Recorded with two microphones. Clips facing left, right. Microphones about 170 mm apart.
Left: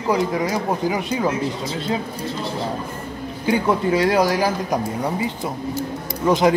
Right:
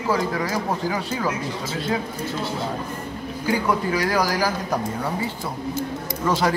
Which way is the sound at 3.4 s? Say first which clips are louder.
Left 4 dB; 25° left (ahead or behind).